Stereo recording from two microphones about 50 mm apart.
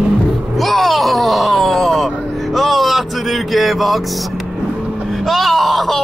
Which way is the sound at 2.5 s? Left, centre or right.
Centre.